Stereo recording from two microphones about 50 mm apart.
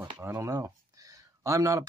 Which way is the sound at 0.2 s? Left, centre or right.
Right.